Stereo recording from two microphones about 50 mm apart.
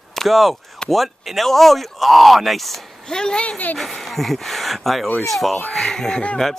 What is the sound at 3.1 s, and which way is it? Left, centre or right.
Speech, centre.